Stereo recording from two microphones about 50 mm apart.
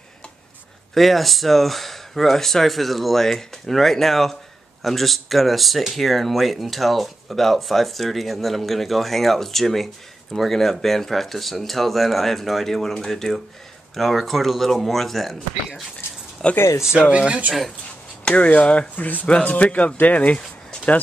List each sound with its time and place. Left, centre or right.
0.9 s speech: centre
16.4 s speech: centre
16.8 s speech: centre
18.3 s speech: left
20.3 s a sound: centre